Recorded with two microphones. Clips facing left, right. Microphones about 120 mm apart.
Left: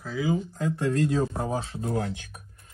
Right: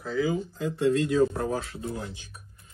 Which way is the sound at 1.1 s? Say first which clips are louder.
Right 3 dB; 25° left (ahead or behind).